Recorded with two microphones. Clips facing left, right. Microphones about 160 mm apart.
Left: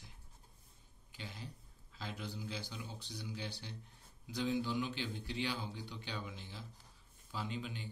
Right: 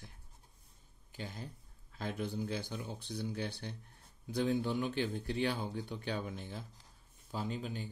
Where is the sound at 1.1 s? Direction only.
45° right (ahead or behind).